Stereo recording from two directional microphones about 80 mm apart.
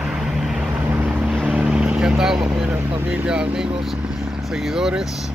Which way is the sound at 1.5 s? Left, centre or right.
Centre.